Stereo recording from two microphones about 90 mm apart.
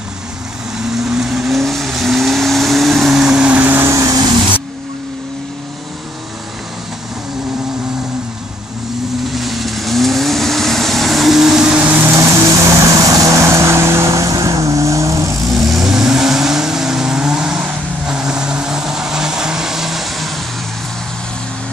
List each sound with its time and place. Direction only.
0.7 s vehicle: 5° right (ahead or behind); by 3.9 s 20° right (ahead or behind)
3.9 s vehicle: 35° right (ahead or behind)
9.3 s vehicle: centre (ahead or behind)
11.8 s vehicle: 20° right (ahead or behind)
12.8 s vehicle: 35° right (ahead or behind)
15.7 s vehicle: 5° right (ahead or behind)